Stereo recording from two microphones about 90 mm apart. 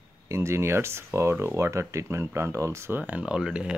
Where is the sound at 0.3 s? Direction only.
30° right (ahead or behind).